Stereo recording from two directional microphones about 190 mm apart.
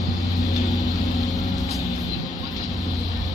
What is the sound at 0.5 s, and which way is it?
Vehicle, 20° left (ahead or behind).